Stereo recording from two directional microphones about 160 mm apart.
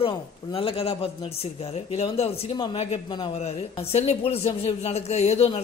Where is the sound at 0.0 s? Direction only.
35° left (ahead or behind).